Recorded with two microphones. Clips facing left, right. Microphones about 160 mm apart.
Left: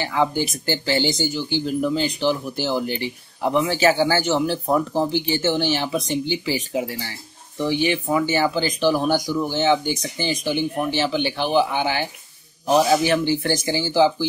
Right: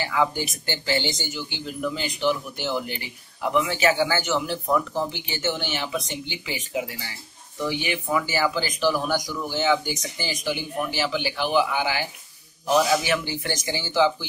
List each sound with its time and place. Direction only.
0.0 s speech: 30° left (ahead or behind)